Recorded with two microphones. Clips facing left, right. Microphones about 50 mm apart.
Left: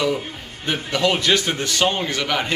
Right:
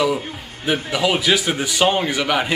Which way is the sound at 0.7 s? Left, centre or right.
Centre.